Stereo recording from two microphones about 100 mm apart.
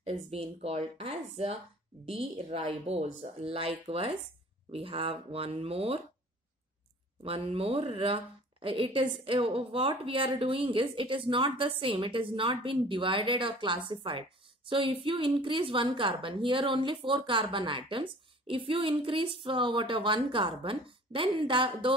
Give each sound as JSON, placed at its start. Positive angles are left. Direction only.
{"t": 0.0, "sound": "speech", "side_deg": -80}
{"t": 2.0, "sound": "a woman's voice", "side_deg": -65}
{"t": 7.2, "sound": "a woman's voice", "side_deg": -75}